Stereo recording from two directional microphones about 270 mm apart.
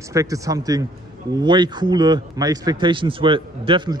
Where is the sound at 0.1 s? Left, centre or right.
Centre.